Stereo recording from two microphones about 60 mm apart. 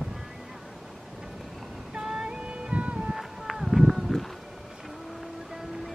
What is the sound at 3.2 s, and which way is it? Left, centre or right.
Run, centre.